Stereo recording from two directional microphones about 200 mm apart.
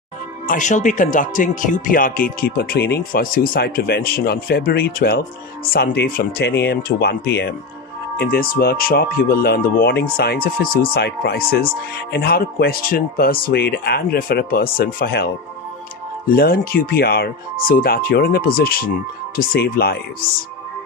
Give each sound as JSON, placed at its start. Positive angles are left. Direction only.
{"t": 0.5, "sound": "speech", "side_deg": 40}